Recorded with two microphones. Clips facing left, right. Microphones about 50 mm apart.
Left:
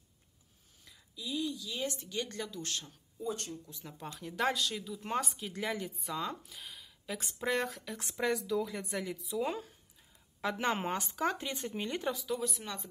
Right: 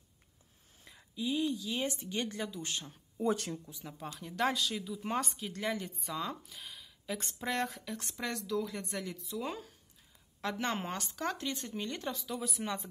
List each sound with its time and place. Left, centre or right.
0.8 s a woman's voice: right
2.2 s speech: centre
3.2 s speech: right
3.7 s speech: centre
12.2 s speech: centre